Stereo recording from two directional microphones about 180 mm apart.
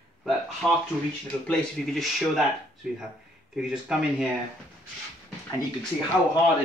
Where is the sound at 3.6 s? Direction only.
5° right (ahead or behind).